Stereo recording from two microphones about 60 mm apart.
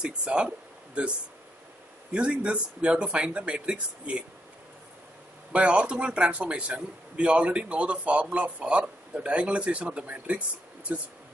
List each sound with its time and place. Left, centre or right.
0.0 s speech: centre
2.1 s a man's voice: centre
5.5 s a man's voice: centre